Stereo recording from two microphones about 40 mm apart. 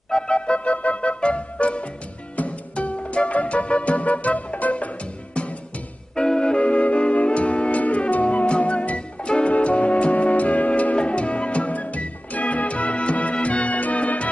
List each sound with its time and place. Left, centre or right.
0.1 s music: left
6.1 s music: centre; by 14.3 s left